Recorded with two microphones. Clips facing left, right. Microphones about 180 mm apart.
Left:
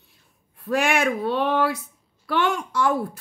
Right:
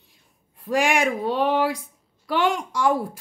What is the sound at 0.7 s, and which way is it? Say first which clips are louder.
Speech: even; 15° right (ahead or behind).